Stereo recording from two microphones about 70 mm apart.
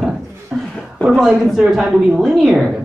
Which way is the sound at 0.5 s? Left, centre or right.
Centre.